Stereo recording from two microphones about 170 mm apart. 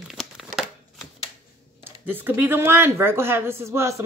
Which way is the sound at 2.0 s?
10° right (ahead or behind).